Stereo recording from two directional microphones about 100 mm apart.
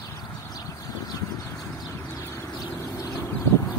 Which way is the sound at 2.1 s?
25° left (ahead or behind).